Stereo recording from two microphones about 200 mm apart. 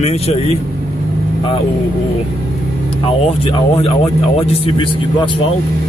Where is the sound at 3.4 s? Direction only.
30° left (ahead or behind).